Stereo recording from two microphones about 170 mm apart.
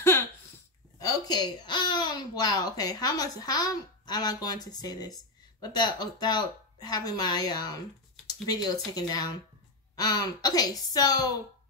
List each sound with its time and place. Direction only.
0.9 s a woman's voice: 25° left (ahead or behind)